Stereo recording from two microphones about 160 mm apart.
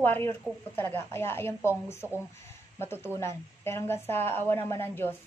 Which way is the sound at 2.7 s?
15° left (ahead or behind).